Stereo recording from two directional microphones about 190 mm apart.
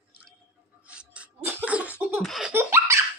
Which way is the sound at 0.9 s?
5° right (ahead or behind).